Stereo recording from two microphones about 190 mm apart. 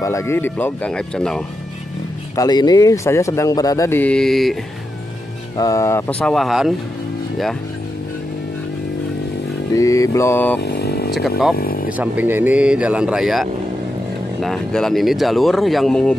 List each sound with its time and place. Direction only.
0.0 s speech: 15° left (ahead or behind)
2.3 s speech: 20° left (ahead or behind); by 4.6 s centre (ahead or behind)
5.6 s speech: 15° left (ahead or behind); by 6.7 s centre (ahead or behind)
9.8 s speech: 15° left (ahead or behind)
10.6 s vehicle: 55° left (ahead or behind)
11.1 s speech: centre (ahead or behind)
11.5 s speech: 50° left (ahead or behind)
12.0 s speech: 10° right (ahead or behind)